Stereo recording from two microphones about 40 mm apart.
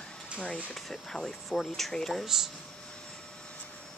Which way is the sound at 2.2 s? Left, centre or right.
Centre.